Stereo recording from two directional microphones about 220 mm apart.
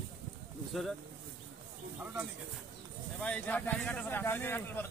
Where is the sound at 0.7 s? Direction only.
Centre (ahead or behind).